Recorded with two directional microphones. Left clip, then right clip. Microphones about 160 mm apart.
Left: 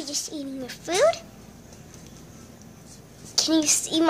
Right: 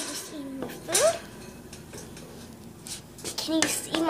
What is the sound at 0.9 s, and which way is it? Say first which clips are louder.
Speech: left 3 dB; 45° left (ahead or behind).